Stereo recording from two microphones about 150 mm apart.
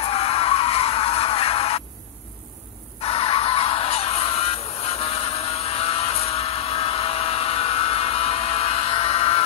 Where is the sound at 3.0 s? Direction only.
40° left (ahead or behind).